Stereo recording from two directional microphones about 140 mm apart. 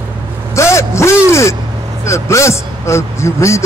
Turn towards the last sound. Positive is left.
turn(degrees=20)  # may be behind; listen again after turning